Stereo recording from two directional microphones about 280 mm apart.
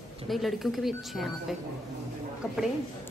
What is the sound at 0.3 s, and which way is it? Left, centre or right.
A woman's voice, centre.